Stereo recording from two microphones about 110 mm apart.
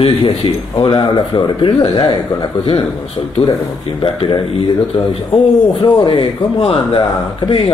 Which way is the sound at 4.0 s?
50° left (ahead or behind).